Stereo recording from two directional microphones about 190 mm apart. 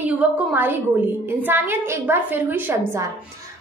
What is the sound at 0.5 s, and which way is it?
A woman's voice, 10° right (ahead or behind).